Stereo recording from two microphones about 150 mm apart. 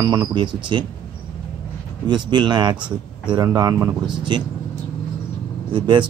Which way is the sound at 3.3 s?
25° right (ahead or behind).